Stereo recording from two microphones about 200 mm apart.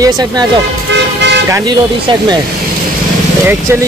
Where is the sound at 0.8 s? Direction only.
60° right (ahead or behind).